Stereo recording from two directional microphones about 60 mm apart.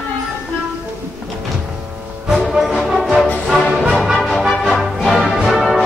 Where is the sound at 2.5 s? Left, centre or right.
Centre.